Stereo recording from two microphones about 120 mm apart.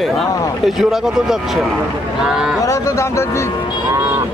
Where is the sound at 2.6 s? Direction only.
25° left (ahead or behind).